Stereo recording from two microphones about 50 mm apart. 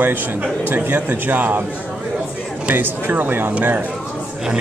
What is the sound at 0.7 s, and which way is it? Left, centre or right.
Speech, right.